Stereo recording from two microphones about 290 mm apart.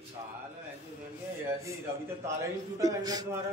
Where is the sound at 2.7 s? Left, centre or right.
Centre.